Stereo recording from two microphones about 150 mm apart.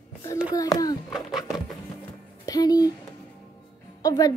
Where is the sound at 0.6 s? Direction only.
25° left (ahead or behind).